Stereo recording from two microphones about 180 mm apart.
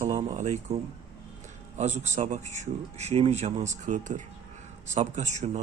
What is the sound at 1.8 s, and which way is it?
Speech, 40° right (ahead or behind).